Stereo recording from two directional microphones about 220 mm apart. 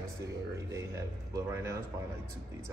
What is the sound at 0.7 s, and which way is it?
A man's voice, 15° right (ahead or behind).